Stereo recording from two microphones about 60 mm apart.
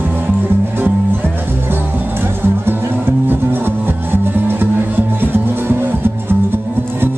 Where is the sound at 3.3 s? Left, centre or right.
Right.